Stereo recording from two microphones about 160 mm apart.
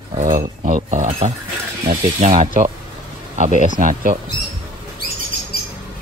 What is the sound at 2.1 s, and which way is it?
Speech, 50° right (ahead or behind).